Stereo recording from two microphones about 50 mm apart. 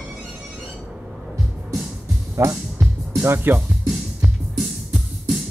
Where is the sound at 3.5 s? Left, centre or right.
Right.